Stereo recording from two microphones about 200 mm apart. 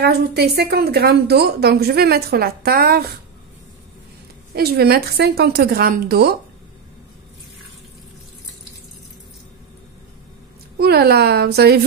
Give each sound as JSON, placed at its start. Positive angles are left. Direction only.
{"t": 0.0, "sound": "a woman's voice", "side_deg": -55}
{"t": 4.6, "sound": "a woman's voice", "side_deg": -50}
{"t": 10.8, "sound": "a woman's voice", "side_deg": -55}